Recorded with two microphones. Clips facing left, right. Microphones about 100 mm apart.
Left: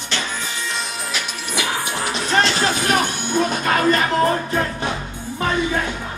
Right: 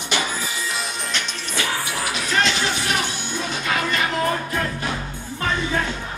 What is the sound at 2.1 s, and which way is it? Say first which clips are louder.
Music: left 3 dB; 35° left (ahead or behind).